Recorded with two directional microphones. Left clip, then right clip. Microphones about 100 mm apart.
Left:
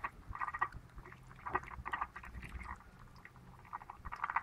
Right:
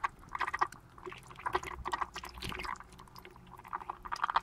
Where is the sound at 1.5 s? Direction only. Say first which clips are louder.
Right 4 dB; 30° right (ahead or behind).